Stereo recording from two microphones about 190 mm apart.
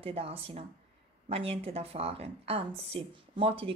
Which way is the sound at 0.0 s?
30° right (ahead or behind).